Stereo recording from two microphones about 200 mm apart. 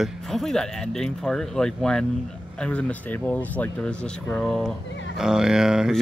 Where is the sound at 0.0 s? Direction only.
Centre (ahead or behind).